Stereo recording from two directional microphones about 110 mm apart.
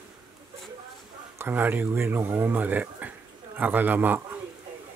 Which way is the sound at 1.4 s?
20° right (ahead or behind).